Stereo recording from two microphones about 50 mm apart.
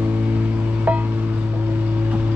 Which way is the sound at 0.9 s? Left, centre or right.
Right.